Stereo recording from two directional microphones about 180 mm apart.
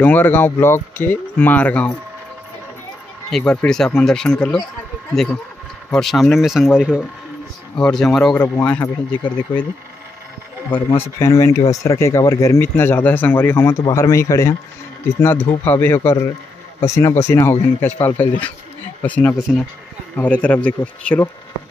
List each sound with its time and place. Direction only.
0.0 s speech: 10° left (ahead or behind)
3.3 s speech: 5° left (ahead or behind)
9.2 s speech: 25° left (ahead or behind)
10.9 s speech: 15° left (ahead or behind)
20.4 s speech: 10° left (ahead or behind)